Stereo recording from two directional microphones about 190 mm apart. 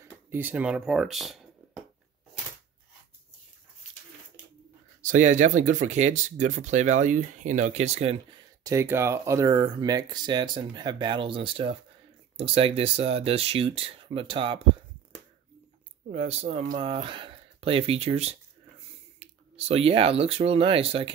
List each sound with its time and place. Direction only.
0.0 s speech: 10° right (ahead or behind)
5.0 s speech: 40° right (ahead or behind)
16.1 s speech: 35° right (ahead or behind)